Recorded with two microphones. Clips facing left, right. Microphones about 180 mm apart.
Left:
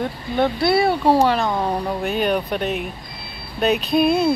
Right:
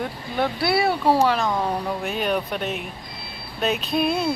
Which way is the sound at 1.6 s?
15° left (ahead or behind).